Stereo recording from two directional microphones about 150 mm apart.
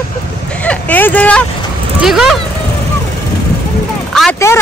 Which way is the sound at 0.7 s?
10° left (ahead or behind).